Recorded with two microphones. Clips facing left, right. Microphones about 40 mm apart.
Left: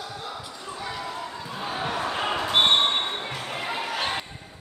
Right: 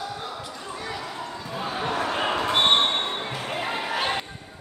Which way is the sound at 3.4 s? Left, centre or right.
Centre.